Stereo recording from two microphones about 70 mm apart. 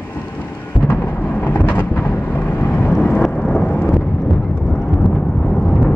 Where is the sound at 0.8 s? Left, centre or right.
Left.